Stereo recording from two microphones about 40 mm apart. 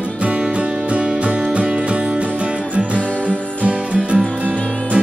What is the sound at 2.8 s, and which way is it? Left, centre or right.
Music, right.